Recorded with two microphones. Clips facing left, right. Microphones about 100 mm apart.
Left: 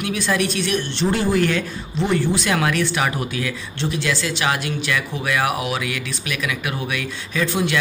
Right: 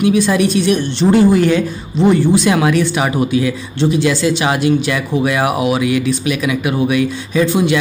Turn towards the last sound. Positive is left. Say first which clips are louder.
# right 7 dB
turn(degrees=-15)  # may be behind; listen again after turning